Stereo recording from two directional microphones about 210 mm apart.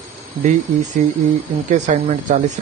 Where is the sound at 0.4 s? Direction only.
35° right (ahead or behind).